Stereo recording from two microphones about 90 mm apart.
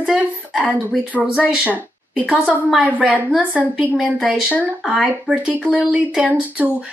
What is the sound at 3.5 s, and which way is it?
Speech, 5° right (ahead or behind).